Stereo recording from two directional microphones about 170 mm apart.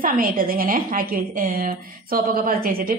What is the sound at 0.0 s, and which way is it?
A woman's voice, 55° right (ahead or behind).